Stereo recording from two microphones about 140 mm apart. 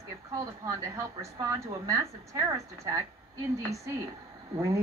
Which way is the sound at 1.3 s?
25° right (ahead or behind).